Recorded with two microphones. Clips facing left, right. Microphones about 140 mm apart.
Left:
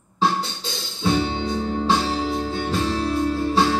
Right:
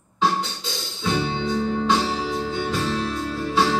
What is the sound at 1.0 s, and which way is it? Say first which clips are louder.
Music: left 2 dB; 30° left (ahead or behind).